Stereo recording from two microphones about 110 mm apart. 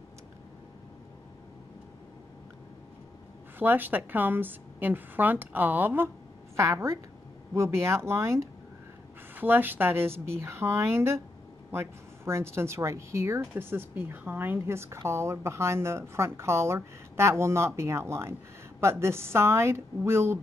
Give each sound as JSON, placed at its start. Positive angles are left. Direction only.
{"t": 3.5, "sound": "a woman's voice", "side_deg": -15}